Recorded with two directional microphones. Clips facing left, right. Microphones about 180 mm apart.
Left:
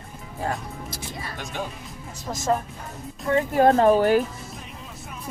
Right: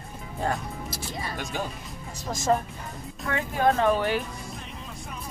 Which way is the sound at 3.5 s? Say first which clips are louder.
Left 5 dB; 40° left (ahead or behind).